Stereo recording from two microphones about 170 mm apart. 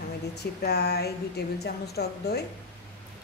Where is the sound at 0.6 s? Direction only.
70° left (ahead or behind).